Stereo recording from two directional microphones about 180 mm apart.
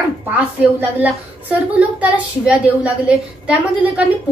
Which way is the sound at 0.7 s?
10° right (ahead or behind).